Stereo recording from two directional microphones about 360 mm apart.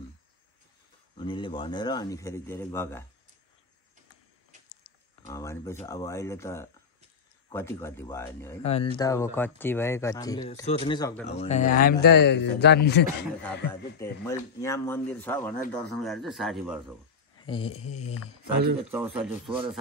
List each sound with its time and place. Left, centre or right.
1.1 s speech: centre
5.2 s speech: centre; by 13.0 s left
13.9 s speech: centre
17.5 s speech: centre
18.9 s speech: centre